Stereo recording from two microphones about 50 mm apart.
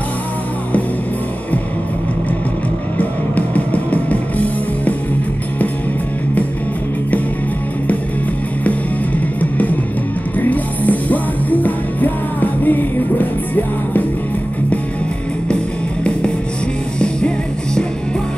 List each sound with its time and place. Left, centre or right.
3.0 s music: left
9.4 s music: left